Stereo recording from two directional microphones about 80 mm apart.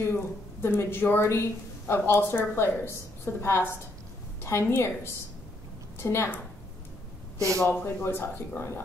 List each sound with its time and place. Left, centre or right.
0.6 s a woman's voice: left
7.3 s speech: right
7.7 s speech: left